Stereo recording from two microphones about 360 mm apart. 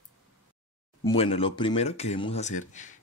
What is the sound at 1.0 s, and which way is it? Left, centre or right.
Speech, centre.